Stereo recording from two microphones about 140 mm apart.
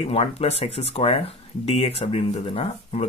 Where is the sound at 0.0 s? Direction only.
45° left (ahead or behind).